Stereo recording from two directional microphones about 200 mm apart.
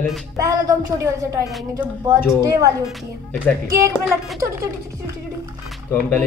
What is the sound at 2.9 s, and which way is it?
Speech, 10° left (ahead or behind).